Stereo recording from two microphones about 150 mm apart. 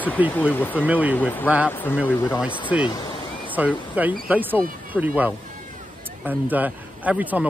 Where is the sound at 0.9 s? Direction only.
10° right (ahead or behind).